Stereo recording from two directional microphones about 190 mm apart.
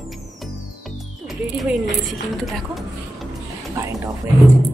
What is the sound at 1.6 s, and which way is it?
A woman's voice, centre (ahead or behind).